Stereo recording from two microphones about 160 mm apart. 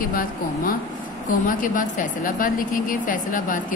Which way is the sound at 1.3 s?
55° left (ahead or behind).